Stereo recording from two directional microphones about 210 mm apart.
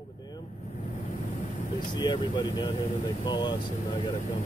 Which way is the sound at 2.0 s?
20° left (ahead or behind).